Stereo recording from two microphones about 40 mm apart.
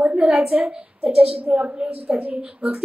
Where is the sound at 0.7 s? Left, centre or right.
Right.